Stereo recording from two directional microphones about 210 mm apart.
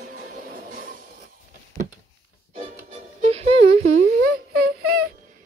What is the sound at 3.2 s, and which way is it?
Music, 30° right (ahead or behind).